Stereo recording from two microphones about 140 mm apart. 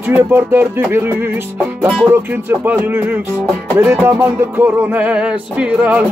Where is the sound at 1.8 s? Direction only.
Centre (ahead or behind).